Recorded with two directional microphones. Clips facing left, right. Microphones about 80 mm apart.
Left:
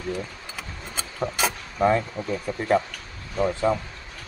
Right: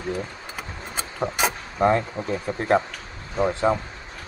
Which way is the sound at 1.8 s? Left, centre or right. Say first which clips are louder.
Right 1 dB; right.